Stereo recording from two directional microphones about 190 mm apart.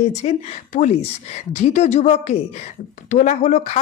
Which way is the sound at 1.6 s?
40° left (ahead or behind).